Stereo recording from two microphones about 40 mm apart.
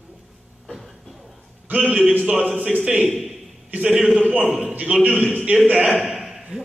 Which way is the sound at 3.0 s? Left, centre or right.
Centre.